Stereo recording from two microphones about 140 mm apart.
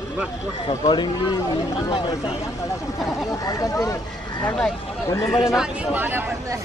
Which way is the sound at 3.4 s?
25° left (ahead or behind).